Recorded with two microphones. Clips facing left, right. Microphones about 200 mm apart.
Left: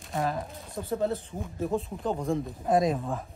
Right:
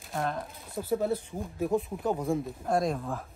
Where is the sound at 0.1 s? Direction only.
Centre (ahead or behind).